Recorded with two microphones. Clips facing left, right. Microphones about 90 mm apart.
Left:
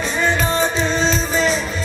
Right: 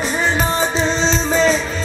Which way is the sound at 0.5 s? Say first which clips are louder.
Even; 30° right (ahead or behind).